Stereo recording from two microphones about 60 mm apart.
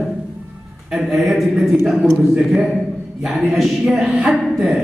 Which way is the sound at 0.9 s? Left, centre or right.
Centre.